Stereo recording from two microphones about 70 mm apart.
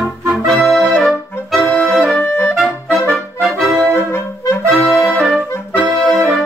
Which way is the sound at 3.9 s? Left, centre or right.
Left.